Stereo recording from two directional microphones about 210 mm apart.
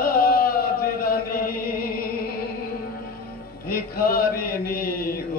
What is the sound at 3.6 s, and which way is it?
Mantra, 45° left (ahead or behind).